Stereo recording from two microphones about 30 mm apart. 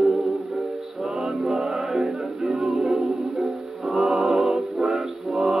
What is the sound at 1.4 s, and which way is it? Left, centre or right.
Music, right.